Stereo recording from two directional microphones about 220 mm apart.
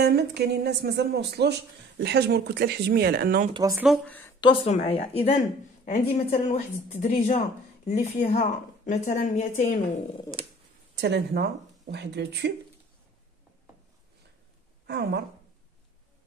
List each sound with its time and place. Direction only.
0.0 s speech: 50° right (ahead or behind)
3.5 s speech: 15° right (ahead or behind)
3.8 s speech: 5° left (ahead or behind)
4.4 s a woman's voice: 25° left (ahead or behind)
11.0 s speech: 50° right (ahead or behind)
14.9 s speech: 45° right (ahead or behind)